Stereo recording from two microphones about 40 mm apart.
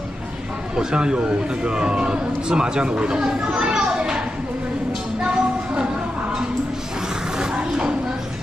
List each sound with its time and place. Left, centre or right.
0.7 s a man's voice: right
5.2 s music: right